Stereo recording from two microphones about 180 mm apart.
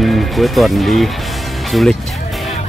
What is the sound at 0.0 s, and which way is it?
Speech, centre (ahead or behind).